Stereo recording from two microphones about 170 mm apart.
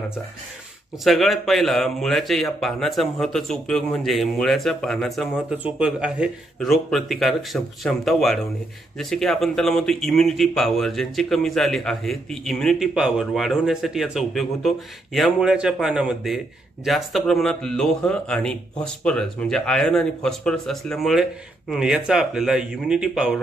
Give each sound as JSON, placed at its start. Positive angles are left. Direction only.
{"t": 1.0, "sound": "speech", "side_deg": 0}